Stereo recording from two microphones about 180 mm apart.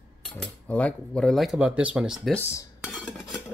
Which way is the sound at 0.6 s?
10° left (ahead or behind).